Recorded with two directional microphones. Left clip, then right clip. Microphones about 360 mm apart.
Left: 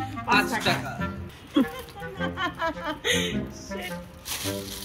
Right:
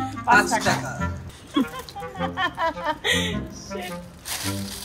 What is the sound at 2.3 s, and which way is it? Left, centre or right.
Speech, centre.